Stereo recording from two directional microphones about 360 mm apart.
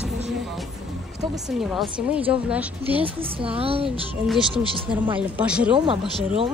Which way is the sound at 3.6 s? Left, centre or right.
Centre.